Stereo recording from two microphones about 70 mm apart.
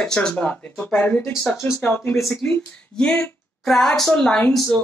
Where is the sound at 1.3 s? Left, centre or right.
Centre.